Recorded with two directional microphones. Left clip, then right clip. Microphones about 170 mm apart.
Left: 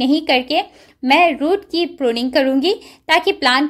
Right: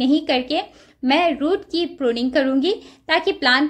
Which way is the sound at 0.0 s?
35° left (ahead or behind).